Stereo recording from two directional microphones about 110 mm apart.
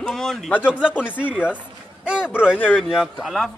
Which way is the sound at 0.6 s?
10° right (ahead or behind).